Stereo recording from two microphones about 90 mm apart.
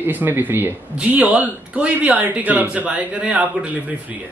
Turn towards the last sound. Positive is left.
turn(degrees=-15)  # may be behind; listen again after turning